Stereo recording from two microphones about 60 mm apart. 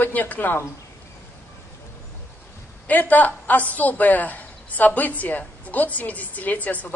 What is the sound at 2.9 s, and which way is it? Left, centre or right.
A woman's voice, left.